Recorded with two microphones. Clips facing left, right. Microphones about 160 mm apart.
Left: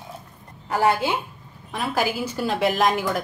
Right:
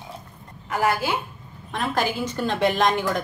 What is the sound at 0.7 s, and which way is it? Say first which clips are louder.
Speech: left 2 dB; 25° left (ahead or behind).